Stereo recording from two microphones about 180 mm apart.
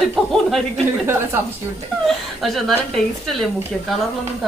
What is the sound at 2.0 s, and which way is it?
A woman's voice, centre (ahead or behind).